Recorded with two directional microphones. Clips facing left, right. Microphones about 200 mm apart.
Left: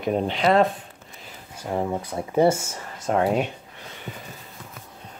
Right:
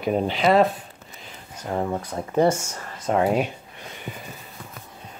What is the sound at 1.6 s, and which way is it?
Speech, 15° left (ahead or behind).